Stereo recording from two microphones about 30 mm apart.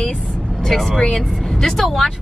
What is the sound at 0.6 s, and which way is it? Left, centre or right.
Speech, centre.